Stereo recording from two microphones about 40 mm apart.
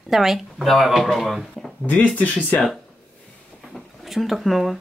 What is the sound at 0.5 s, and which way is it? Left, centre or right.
Speech, centre.